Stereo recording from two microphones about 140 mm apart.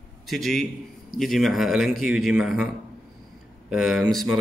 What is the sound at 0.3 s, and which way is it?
A man's voice, centre (ahead or behind).